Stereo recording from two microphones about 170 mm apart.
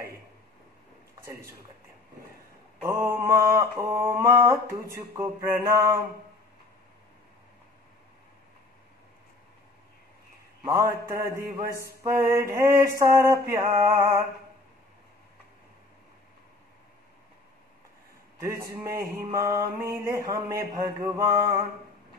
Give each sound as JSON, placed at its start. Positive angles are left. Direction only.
{"t": 2.8, "sound": "mantra", "side_deg": -15}
{"t": 10.6, "sound": "a man's voice", "side_deg": -15}
{"t": 11.1, "sound": "mantra", "side_deg": -20}
{"t": 18.4, "sound": "mantra", "side_deg": -15}